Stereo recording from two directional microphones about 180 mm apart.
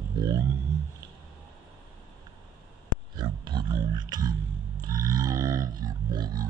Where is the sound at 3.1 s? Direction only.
25° right (ahead or behind).